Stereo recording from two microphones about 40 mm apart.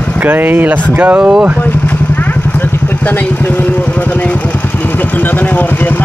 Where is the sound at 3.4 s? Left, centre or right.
Left.